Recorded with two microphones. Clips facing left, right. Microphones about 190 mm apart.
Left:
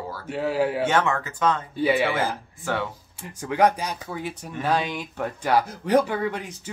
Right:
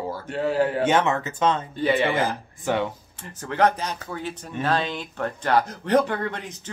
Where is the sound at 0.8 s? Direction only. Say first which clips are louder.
Right 2 dB; 20° right (ahead or behind).